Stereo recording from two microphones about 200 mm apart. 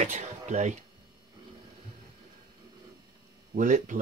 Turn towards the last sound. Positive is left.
turn(degrees=-40)  # may be behind; listen again after turning